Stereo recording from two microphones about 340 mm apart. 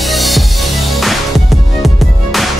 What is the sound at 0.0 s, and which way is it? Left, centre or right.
Music, centre.